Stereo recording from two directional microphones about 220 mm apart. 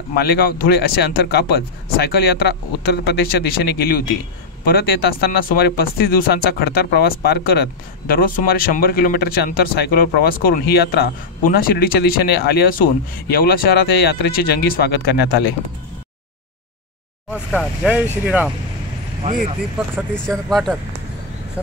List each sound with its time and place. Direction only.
0.1 s speech: 45° left (ahead or behind)
17.3 s speech: 5° right (ahead or behind)
19.2 s speech: 35° right (ahead or behind)
20.2 s speech: centre (ahead or behind)